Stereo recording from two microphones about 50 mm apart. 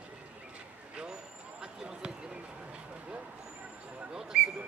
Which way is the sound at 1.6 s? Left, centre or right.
Centre.